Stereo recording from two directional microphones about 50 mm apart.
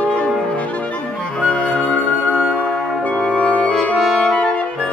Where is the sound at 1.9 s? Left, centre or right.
Left.